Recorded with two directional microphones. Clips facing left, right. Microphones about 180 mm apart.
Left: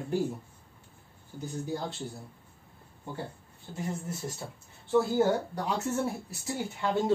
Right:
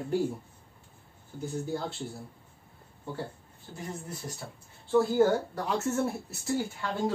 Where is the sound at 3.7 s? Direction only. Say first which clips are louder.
Left 4 dB; 20° left (ahead or behind).